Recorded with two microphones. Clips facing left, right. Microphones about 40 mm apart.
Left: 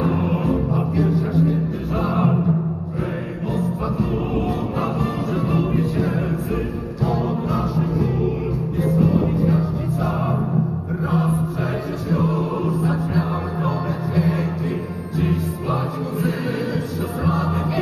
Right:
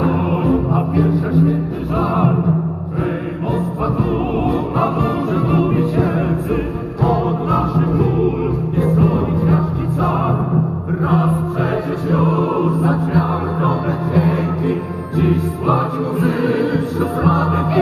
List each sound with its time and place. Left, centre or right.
0.7 s music: right
1.5 s music: centre
4.7 s music: right